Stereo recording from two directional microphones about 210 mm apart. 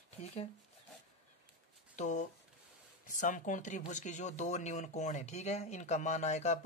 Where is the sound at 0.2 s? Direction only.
30° left (ahead or behind).